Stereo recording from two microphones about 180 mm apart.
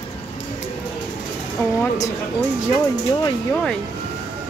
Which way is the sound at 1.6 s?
15° left (ahead or behind).